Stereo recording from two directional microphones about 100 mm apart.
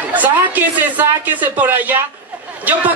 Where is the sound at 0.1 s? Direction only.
15° right (ahead or behind).